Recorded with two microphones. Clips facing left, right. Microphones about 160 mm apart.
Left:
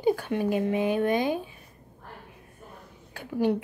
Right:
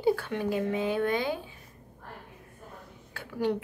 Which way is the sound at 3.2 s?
15° left (ahead or behind).